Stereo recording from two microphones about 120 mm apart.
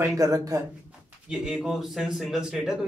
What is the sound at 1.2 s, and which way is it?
Speech, 5° right (ahead or behind).